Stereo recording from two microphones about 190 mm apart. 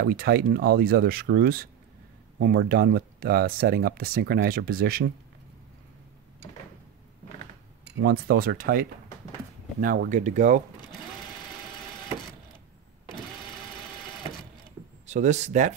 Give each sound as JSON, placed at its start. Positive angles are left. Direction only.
{"t": 0.0, "sound": "speech", "side_deg": -55}
{"t": 8.0, "sound": "speech", "side_deg": -55}
{"t": 15.0, "sound": "speech", "side_deg": -40}